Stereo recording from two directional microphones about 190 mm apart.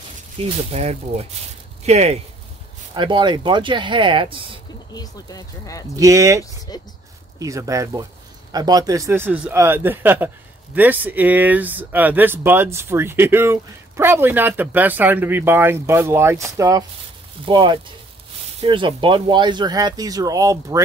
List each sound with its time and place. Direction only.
0.4 s speech: 30° right (ahead or behind)
4.9 s speech: 20° left (ahead or behind)
5.9 s speech: 15° right (ahead or behind)
6.7 s speech: 20° left (ahead or behind)
7.3 s speech: 15° right (ahead or behind)